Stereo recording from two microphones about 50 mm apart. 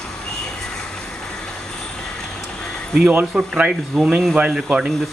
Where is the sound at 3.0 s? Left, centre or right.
Right.